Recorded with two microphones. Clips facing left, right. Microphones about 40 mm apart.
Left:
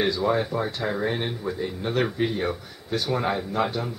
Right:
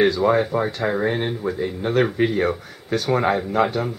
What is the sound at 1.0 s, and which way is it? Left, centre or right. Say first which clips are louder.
Speech: right 5 dB; centre.